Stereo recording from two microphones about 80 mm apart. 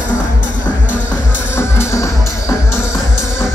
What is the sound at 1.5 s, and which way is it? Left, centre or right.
Music, left.